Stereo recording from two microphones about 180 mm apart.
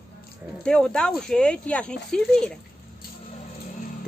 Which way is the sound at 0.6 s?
5° left (ahead or behind).